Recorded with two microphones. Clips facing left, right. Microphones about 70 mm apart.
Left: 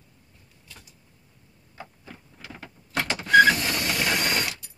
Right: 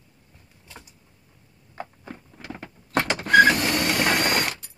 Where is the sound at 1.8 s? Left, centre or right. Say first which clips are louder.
Right 6 dB; right.